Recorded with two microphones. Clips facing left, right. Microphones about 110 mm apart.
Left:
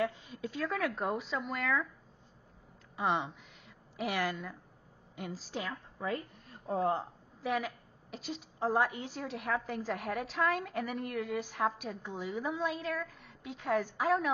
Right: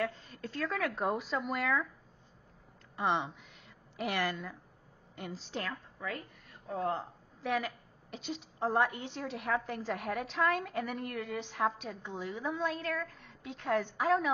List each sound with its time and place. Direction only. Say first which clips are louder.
0.0 s a woman's voice: left 2 dB; 15° left (ahead or behind)
3.0 s a woman's voice: even; centre (ahead or behind)
5.9 s a woman's voice: left 4 dB; 30° left (ahead or behind)
7.4 s a woman's voice: even; centre (ahead or behind)